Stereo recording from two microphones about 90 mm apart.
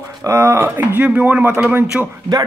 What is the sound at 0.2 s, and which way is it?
Speech, 35° right (ahead or behind).